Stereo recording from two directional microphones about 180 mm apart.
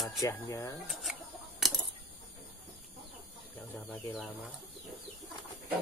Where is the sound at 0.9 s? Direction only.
Centre (ahead or behind).